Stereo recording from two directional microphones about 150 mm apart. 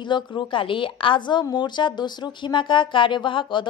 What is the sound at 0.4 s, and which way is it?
A woman's voice, 35° left (ahead or behind).